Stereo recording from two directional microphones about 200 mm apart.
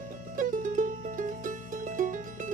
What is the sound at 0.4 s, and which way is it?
Music, 40° right (ahead or behind).